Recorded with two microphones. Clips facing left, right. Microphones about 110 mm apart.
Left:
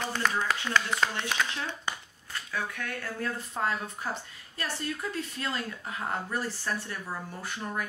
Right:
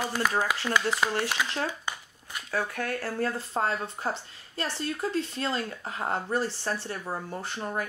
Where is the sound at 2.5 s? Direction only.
40° right (ahead or behind).